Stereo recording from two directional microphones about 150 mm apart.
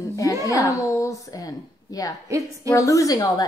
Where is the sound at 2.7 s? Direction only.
20° left (ahead or behind).